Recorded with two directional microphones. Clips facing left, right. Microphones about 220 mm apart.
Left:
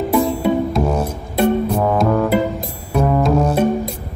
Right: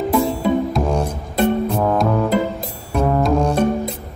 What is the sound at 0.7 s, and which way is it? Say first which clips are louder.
Music: left 1 dB; 5° left (ahead or behind).